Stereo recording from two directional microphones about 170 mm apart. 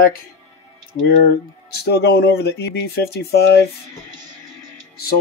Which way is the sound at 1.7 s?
70° left (ahead or behind).